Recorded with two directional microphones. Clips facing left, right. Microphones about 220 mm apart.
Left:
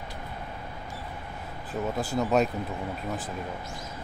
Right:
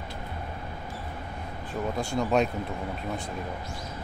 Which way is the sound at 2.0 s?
5° left (ahead or behind).